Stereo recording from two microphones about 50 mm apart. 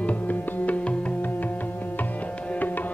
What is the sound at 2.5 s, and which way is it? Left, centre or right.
Tabla, left.